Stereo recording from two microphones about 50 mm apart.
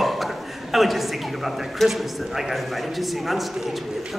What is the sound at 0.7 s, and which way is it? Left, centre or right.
A man's voice, centre.